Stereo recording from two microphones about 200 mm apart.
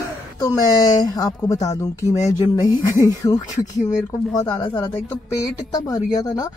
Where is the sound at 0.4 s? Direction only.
20° left (ahead or behind).